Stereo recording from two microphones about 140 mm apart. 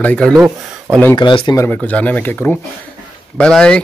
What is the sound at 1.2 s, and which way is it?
Speech, 35° left (ahead or behind).